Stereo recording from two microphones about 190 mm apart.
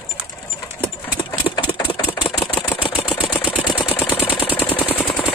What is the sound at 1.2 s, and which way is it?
Engine, 25° left (ahead or behind).